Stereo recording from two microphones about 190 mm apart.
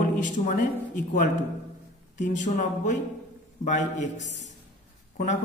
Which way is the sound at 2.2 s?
40° left (ahead or behind).